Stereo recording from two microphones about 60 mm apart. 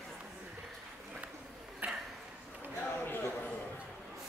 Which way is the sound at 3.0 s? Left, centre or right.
Left.